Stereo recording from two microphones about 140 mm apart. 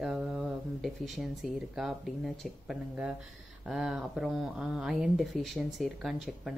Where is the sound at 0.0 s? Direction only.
5° right (ahead or behind).